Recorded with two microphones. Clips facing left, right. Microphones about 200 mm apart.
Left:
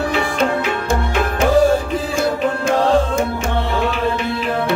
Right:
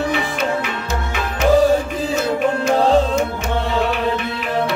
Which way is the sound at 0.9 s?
50° left (ahead or behind).